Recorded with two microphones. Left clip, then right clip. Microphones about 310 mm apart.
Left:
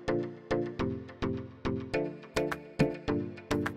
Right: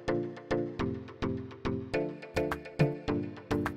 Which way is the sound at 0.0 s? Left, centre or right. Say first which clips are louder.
Even; centre.